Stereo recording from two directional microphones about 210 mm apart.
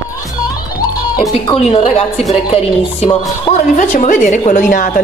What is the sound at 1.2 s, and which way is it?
A woman's voice, 25° left (ahead or behind).